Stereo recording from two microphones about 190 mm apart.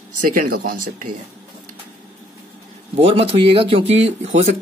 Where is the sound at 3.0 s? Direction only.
30° right (ahead or behind).